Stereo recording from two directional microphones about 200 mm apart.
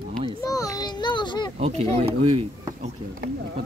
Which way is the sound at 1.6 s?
35° right (ahead or behind).